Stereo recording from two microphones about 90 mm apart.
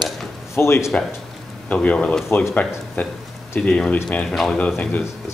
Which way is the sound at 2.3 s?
25° left (ahead or behind).